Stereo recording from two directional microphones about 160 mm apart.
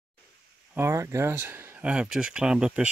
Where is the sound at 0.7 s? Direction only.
15° right (ahead or behind).